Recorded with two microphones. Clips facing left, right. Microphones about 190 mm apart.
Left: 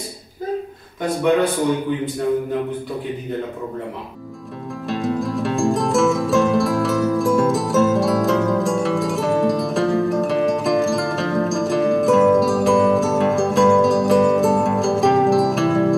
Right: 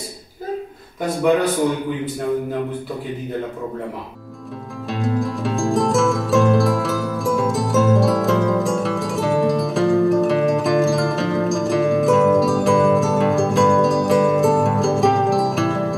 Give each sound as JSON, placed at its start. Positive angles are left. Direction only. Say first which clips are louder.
{"t": 4.8, "sound": "music", "louder": "even", "side_deg": 0}